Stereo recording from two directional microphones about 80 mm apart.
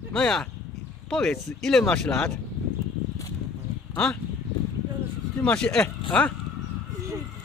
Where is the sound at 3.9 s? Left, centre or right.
Centre.